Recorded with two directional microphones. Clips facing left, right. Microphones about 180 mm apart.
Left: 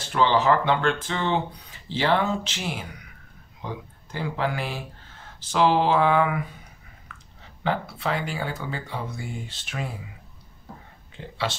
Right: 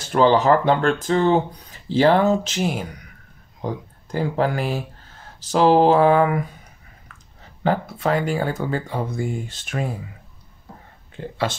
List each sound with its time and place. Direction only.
0.1 s speech: 40° right (ahead or behind)
7.1 s clicking: 40° right (ahead or behind)
7.6 s speech: 45° right (ahead or behind)
11.1 s speech: 50° right (ahead or behind)